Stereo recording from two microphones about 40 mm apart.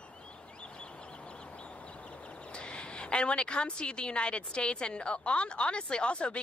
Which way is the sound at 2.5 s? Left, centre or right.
Left.